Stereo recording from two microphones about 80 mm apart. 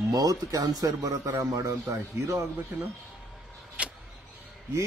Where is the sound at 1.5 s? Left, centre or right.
Right.